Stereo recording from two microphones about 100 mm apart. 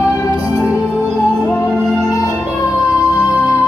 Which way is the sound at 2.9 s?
30° left (ahead or behind).